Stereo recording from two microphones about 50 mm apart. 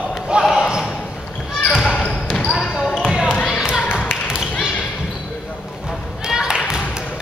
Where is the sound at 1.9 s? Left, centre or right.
Left.